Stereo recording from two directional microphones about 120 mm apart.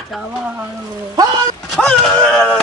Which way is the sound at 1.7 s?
5° left (ahead or behind).